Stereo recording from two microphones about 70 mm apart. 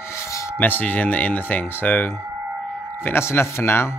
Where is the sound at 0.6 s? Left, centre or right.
Left.